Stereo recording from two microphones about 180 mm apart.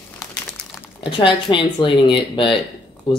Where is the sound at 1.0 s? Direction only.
25° left (ahead or behind).